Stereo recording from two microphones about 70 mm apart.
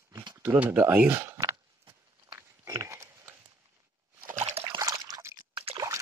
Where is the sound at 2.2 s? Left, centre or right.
Right.